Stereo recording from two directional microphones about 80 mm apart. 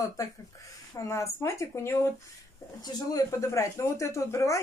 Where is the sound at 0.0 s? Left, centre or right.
Left.